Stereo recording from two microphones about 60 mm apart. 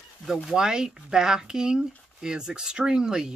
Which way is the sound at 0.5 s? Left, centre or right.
Centre.